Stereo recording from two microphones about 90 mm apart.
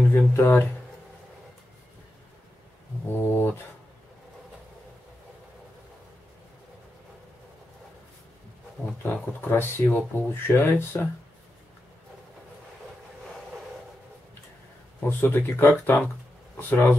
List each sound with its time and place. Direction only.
0.1 s speech: 25° left (ahead or behind)
3.1 s speech: 25° left (ahead or behind)
9.0 s speech: 20° left (ahead or behind)
15.0 s speech: 25° left (ahead or behind)